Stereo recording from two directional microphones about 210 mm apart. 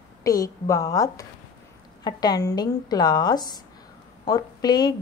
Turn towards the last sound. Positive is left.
turn(degrees=20)  # may be behind; listen again after turning